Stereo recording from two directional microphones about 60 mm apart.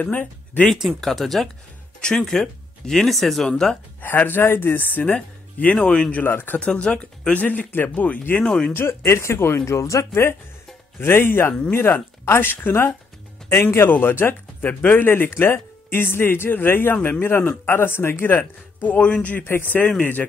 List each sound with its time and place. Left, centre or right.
0.0 s speech: left
0.7 s speech: centre
4.0 s speech: left
6.6 s speech: centre
8.7 s speech: left
9.7 s speech: left
11.0 s speech: left
13.8 s speech: left
16.9 s speech: left
17.2 s speech: left
19.4 s speech: left